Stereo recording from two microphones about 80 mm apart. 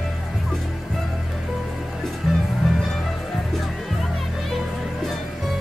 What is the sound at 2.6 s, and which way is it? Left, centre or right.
Music, centre.